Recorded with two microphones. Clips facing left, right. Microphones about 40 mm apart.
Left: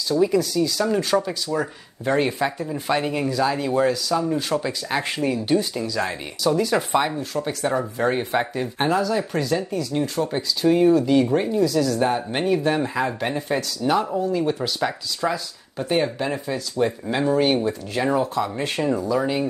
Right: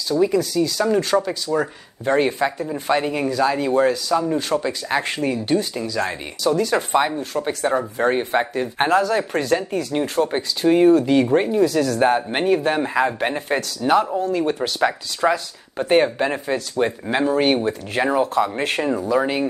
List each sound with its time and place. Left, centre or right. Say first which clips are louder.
0.4 s speech: right 1 dB; right
8.7 s speech: right 3 dB; right
11.6 s speech: right 2 dB; right
12.2 s speech: right 3 dB; right
18.6 s speech: right 2 dB; right